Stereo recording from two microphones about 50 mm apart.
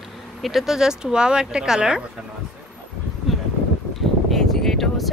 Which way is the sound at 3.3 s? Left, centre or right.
Centre.